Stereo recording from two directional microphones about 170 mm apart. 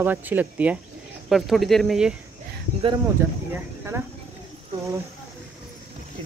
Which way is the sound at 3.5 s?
15° right (ahead or behind).